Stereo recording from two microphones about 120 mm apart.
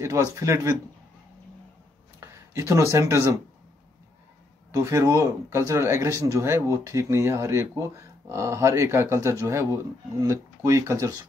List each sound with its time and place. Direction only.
0.0 s speech: 25° right (ahead or behind)
2.1 s speech: 25° right (ahead or behind)
4.7 s speech: 25° right (ahead or behind)